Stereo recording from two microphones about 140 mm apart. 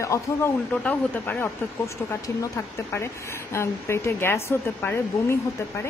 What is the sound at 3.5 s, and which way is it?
A woman's voice, 20° left (ahead or behind).